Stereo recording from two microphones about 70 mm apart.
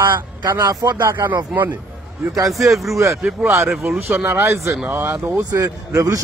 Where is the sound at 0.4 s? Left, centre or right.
Right.